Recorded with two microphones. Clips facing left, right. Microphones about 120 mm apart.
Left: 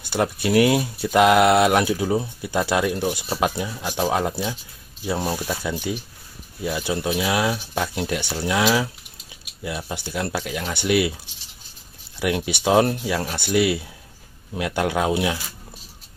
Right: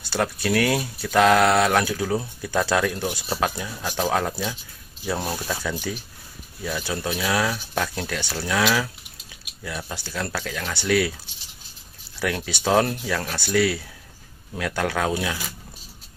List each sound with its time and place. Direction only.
0.1 s speech: 20° left (ahead or behind)
12.2 s speech: 20° left (ahead or behind)